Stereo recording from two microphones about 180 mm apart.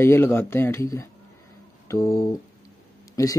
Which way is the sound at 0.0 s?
15° left (ahead or behind).